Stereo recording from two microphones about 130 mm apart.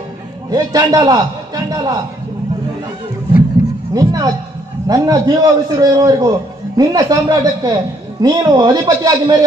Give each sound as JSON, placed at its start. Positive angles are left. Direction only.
{"t": 0.5, "sound": "a man's voice", "side_deg": -25}
{"t": 3.9, "sound": "a man's voice", "side_deg": -30}